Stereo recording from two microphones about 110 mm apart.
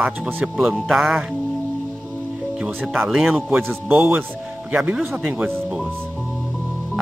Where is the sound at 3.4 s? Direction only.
15° right (ahead or behind).